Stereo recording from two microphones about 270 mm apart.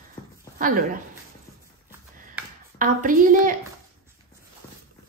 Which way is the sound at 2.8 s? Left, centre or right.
Right.